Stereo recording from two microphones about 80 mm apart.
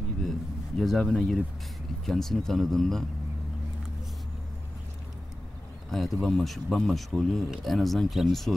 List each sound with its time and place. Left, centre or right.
0.7 s speech: centre
5.9 s speech: centre